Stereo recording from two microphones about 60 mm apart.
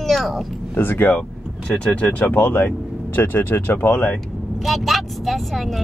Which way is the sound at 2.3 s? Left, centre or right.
Left.